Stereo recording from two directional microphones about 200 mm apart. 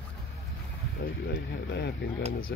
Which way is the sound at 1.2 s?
55° left (ahead or behind).